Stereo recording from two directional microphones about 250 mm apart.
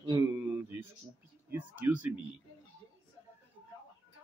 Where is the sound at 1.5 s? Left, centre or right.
Centre.